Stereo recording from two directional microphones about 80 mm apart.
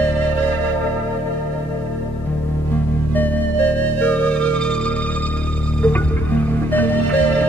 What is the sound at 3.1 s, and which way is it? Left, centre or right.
Music, left.